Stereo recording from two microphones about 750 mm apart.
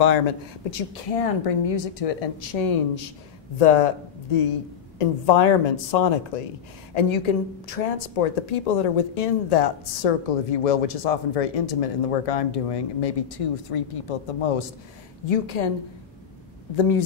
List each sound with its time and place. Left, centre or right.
0.0 s a woman's voice: left
16.7 s speech: left